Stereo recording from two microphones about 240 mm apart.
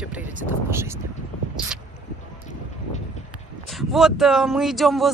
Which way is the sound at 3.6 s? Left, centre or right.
Centre.